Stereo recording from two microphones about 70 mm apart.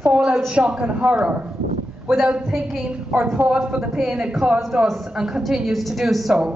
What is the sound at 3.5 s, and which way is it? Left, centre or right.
A woman's voice, centre.